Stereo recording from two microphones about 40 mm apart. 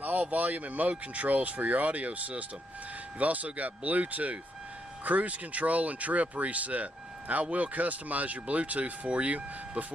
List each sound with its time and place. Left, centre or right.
0.0 s speech: right